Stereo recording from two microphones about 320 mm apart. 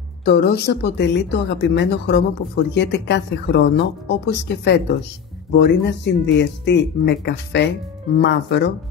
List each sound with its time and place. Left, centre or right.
0.2 s speech: left